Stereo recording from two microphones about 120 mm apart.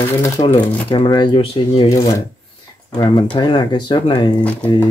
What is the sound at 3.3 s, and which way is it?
Speech, 40° left (ahead or behind).